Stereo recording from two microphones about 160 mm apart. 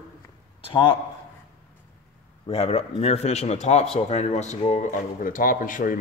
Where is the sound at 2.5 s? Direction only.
40° left (ahead or behind).